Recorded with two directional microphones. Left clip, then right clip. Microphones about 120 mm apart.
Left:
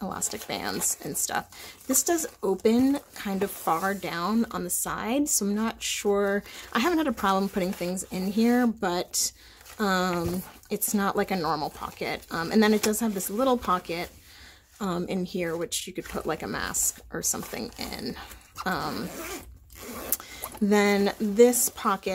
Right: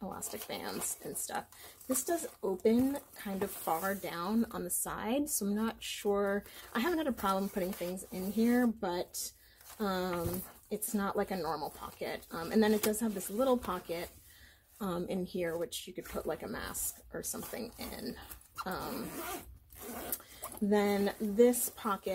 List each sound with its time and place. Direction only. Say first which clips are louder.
0.0 s a sound: left 9 dB; 40° left (ahead or behind)
0.5 s speech: left 10 dB; 40° left (ahead or behind)
18.7 s speech: left 11 dB; 50° left (ahead or behind)
20.6 s speech: left 8 dB; 45° left (ahead or behind)